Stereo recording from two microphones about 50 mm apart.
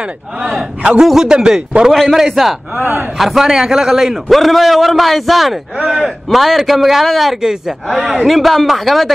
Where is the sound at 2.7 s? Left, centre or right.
Right.